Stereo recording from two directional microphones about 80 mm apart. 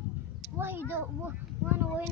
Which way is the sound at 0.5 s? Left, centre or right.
Right.